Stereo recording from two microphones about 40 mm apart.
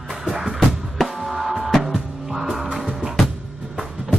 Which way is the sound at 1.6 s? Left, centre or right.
Centre.